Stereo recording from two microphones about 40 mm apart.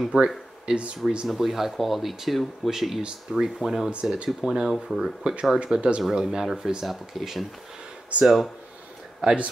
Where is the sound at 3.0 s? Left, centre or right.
Right.